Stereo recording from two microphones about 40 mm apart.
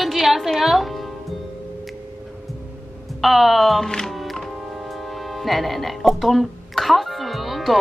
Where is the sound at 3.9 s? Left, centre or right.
Centre.